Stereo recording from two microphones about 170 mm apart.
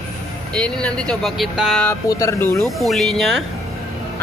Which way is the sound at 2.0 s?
20° left (ahead or behind).